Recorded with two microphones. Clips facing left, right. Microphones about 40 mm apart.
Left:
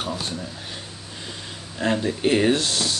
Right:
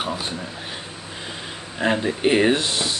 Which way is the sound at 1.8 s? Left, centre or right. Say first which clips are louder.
Right 2 dB; right.